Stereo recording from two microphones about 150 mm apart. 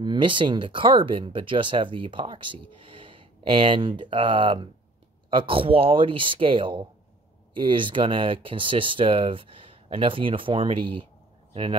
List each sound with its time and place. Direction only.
0.0 s speech: 30° right (ahead or behind)